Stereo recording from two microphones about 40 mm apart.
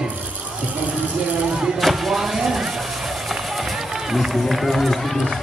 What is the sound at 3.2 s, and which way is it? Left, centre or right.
Speech, centre.